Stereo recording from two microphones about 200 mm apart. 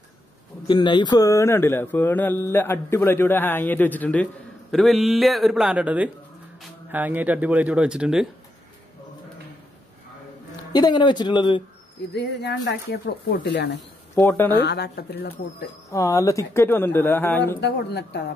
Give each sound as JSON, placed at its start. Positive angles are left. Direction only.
{"t": 0.7, "sound": "speech", "side_deg": 25}
{"t": 10.7, "sound": "speech", "side_deg": 20}
{"t": 12.1, "sound": "speech", "side_deg": 60}
{"t": 14.1, "sound": "speech", "side_deg": 10}
{"t": 14.6, "sound": "speech", "side_deg": 55}
{"t": 15.9, "sound": "speech", "side_deg": 15}
{"t": 17.6, "sound": "speech", "side_deg": 55}